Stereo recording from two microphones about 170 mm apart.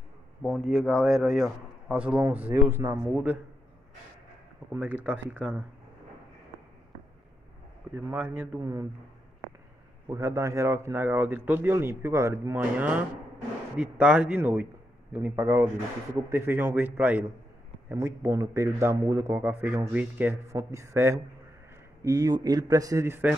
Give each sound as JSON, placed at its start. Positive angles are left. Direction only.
{"t": 0.4, "sound": "a man's voice", "side_deg": 0}
{"t": 4.7, "sound": "a man's voice", "side_deg": -10}
{"t": 7.9, "sound": "a man's voice", "side_deg": -10}
{"t": 10.0, "sound": "a man's voice", "side_deg": -15}